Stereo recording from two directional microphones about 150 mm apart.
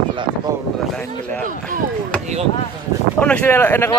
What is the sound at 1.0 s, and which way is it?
Speech, 10° left (ahead or behind).